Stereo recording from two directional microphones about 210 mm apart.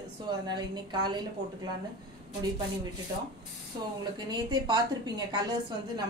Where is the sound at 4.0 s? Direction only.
20° right (ahead or behind).